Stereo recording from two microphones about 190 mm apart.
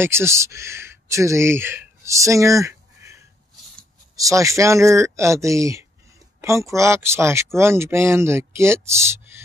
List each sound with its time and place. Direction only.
0.0 s speech: 15° right (ahead or behind)
4.2 s speech: 15° right (ahead or behind)